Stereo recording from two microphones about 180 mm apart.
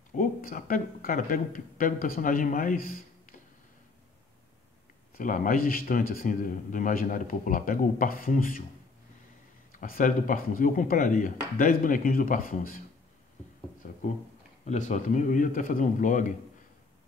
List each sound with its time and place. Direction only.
0.1 s speech: 50° left (ahead or behind)
5.1 s a man's voice: 50° left (ahead or behind)
9.7 s a man's voice: 50° left (ahead or behind)
13.8 s a sound: 45° left (ahead or behind)
14.6 s a man's voice: 40° left (ahead or behind)